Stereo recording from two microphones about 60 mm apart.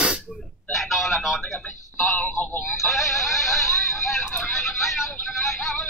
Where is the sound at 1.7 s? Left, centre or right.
Left.